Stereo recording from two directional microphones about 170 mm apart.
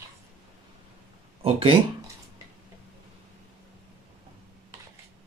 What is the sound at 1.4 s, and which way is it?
Speech, 35° right (ahead or behind).